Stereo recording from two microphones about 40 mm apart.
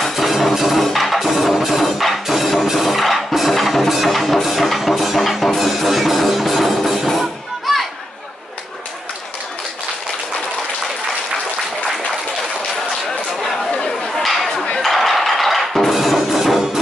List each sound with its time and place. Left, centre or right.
0.0 s music: centre
14.2 s chatter: centre
14.5 s a sound: centre
14.8 s music: centre